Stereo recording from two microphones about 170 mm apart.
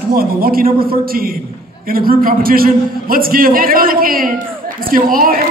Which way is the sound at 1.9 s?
60° right (ahead or behind).